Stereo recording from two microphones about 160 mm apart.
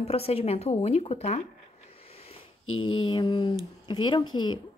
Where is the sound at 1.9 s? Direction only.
40° left (ahead or behind).